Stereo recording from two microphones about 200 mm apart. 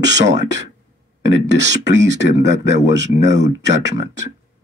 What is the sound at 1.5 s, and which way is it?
Speech, 60° right (ahead or behind).